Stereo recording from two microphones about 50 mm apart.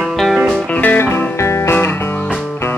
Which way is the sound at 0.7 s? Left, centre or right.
Left.